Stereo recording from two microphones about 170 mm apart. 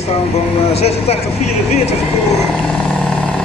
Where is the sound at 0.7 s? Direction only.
40° left (ahead or behind).